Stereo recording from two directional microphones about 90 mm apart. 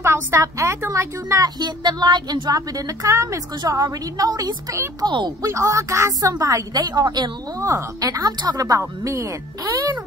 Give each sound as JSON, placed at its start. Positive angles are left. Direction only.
{"t": 0.0, "sound": "speech", "side_deg": -30}
{"t": 1.4, "sound": "speech", "side_deg": -50}
{"t": 5.0, "sound": "speech", "side_deg": -55}
{"t": 5.4, "sound": "speech", "side_deg": -35}
{"t": 7.6, "sound": "speech", "side_deg": -35}